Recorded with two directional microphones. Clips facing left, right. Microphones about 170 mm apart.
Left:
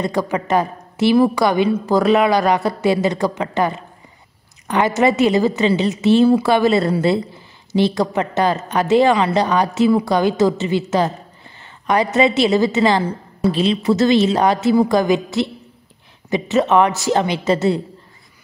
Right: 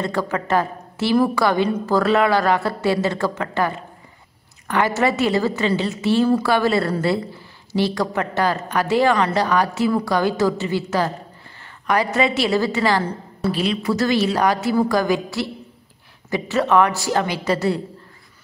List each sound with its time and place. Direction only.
0.0 s a woman's voice: 15° left (ahead or behind)